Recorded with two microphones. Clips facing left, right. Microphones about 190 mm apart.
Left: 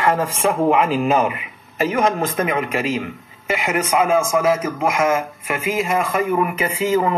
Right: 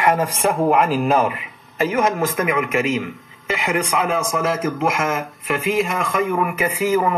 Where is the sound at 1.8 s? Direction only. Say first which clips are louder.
Even; 20° left (ahead or behind).